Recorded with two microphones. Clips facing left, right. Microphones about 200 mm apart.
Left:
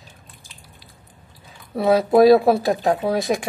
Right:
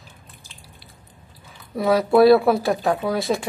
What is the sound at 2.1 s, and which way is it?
Speech, 20° left (ahead or behind).